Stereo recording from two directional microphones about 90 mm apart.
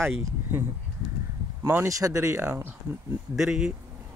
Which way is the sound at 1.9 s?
40° right (ahead or behind).